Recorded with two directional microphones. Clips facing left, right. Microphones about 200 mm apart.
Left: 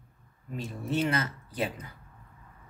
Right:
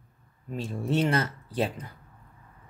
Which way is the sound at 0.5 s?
30° right (ahead or behind).